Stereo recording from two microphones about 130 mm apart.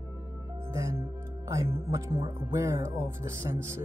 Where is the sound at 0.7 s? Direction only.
20° right (ahead or behind).